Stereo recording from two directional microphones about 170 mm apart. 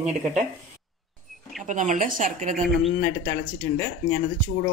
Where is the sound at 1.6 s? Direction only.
45° right (ahead or behind).